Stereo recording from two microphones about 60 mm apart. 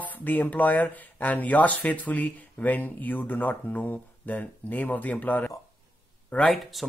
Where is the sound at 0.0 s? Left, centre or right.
Left.